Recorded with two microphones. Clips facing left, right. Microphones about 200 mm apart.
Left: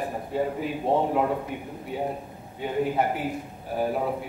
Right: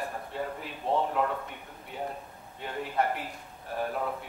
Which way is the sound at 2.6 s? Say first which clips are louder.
Left 6 dB; 5° left (ahead or behind).